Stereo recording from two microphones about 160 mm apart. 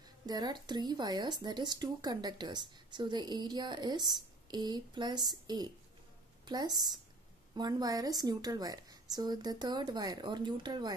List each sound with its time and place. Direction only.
0.3 s speech: 25° right (ahead or behind)